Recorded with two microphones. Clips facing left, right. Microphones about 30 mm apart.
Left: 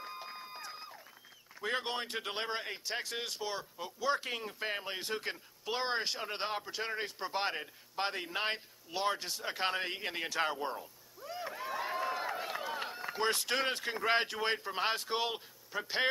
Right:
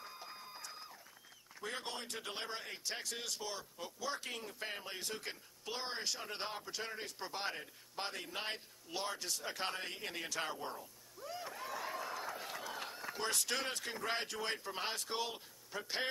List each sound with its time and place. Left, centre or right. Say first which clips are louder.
0.0 s a sound: left 6 dB; left
1.6 s speech: left 8 dB; left
2.8 s speech: left 5 dB; left
3.7 s speech: left 6 dB; centre
4.2 s speech: left 6 dB; left
11.1 s a sound: left 4 dB; centre; by 15.4 s left
15.7 s speech: left 6 dB; centre